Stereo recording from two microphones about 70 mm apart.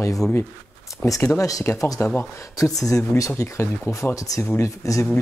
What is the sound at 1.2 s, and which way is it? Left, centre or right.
Speech, left.